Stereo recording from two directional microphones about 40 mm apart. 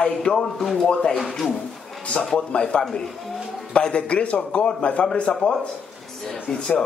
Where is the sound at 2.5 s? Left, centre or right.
Left.